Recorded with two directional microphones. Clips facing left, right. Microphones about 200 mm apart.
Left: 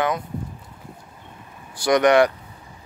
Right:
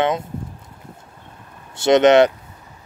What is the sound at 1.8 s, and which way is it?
Speech, 25° right (ahead or behind).